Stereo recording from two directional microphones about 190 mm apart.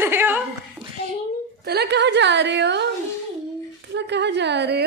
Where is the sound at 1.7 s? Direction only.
60° right (ahead or behind).